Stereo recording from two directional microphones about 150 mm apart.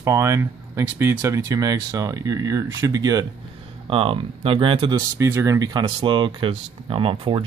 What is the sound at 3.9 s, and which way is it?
Speech, 40° right (ahead or behind).